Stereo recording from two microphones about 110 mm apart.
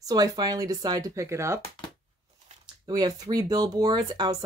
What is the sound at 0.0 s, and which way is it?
Speech, 35° right (ahead or behind).